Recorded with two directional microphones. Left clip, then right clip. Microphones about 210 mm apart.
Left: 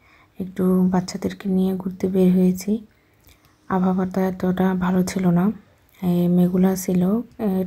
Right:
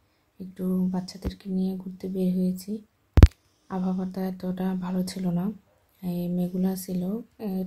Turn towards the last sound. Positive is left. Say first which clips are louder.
# left 10 dB
turn(degrees=15)  # may be behind; listen again after turning